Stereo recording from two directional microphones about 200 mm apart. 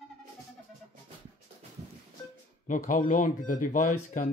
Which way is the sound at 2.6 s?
40° left (ahead or behind).